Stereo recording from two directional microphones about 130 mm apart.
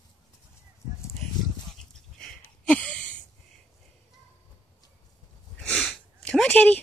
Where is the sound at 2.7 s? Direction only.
10° left (ahead or behind).